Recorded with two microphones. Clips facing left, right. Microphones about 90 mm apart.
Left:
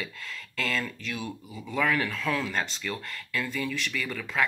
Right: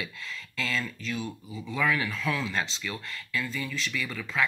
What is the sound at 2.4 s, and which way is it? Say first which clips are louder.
Speech: even; 50° left (ahead or behind).